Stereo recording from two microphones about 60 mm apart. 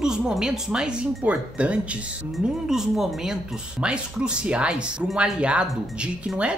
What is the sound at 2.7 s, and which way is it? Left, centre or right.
Speech, centre.